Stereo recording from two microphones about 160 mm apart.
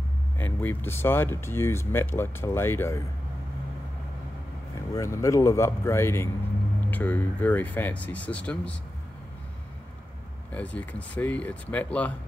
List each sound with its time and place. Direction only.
0.4 s speech: 10° left (ahead or behind)
4.9 s speech: 20° left (ahead or behind)
10.5 s speech: 10° left (ahead or behind)